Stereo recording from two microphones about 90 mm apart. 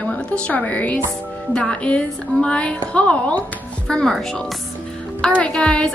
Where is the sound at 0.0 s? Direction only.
15° left (ahead or behind).